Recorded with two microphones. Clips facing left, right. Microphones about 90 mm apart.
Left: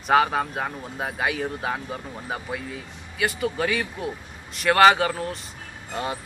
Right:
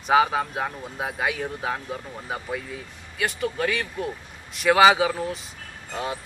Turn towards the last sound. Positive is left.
turn(degrees=0)  # may be behind; listen again after turning